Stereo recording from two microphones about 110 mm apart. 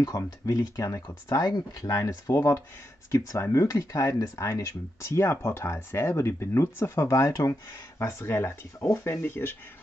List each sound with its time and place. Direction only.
0.0 s speech: 30° left (ahead or behind)